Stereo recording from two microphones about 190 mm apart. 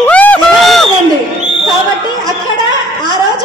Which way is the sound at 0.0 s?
10° left (ahead or behind).